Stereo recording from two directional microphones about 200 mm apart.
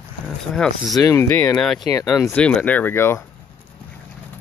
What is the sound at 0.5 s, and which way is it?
Speech, 5° left (ahead or behind).